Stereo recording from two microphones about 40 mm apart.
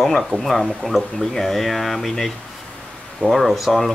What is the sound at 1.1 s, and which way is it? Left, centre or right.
Speech, centre.